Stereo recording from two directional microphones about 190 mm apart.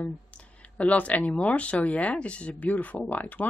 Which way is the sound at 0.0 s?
5° left (ahead or behind).